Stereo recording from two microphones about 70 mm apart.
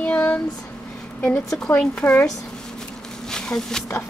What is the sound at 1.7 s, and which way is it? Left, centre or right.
Child singing, left.